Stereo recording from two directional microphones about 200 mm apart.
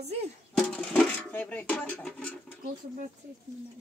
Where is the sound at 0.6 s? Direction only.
5° left (ahead or behind).